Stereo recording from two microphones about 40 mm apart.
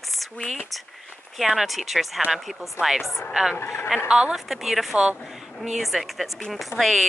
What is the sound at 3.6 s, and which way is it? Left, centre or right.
Speech, left.